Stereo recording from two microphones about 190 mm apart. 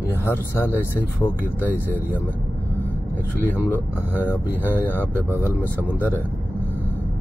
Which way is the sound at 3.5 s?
10° left (ahead or behind).